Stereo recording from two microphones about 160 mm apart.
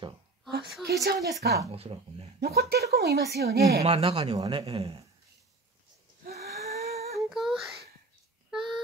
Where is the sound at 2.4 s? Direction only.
80° right.